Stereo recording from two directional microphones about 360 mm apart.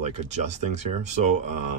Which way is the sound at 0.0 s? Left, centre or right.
Centre.